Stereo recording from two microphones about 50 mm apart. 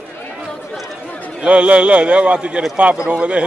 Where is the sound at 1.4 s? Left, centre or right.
Right.